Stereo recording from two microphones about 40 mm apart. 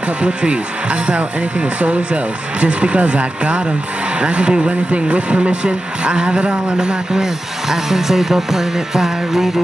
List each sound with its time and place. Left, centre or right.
0.2 s speech: right
7.1 s speech: centre